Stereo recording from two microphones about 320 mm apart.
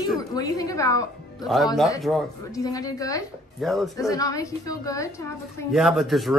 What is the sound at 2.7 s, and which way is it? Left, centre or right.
Speech, centre.